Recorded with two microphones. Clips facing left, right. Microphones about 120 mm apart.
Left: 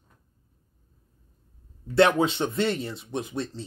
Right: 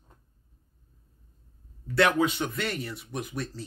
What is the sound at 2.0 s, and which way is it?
Speech, 25° left (ahead or behind).